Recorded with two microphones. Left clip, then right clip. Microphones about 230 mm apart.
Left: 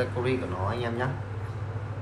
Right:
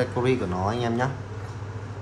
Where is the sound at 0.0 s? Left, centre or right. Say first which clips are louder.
Right 4 dB; right.